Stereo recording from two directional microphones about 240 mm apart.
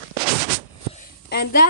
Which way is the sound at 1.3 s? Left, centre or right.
Left.